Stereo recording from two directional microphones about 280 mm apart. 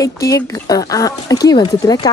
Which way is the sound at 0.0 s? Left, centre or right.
Centre.